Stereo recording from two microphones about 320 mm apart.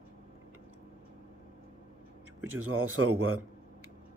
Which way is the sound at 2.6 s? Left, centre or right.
Right.